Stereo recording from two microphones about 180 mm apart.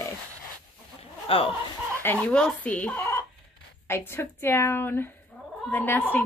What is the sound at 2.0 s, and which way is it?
Speech, 10° left (ahead or behind).